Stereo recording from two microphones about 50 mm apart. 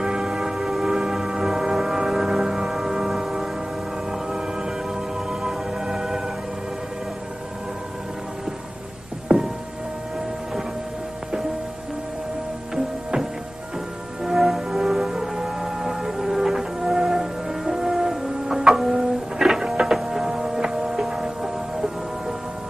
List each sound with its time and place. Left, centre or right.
0.0 s music: centre
9.3 s music: centre
12.7 s music: centre